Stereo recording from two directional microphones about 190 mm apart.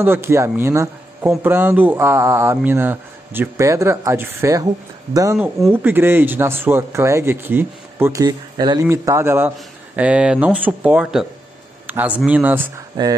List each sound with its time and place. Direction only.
0.0 s speech: 10° right (ahead or behind)